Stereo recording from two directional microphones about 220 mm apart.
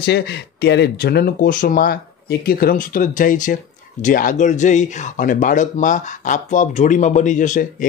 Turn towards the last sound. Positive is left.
turn(degrees=35)  # may be behind; listen again after turning